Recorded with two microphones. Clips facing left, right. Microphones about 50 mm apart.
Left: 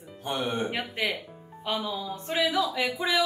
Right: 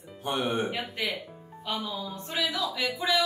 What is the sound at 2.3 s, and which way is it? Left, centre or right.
Speech, centre.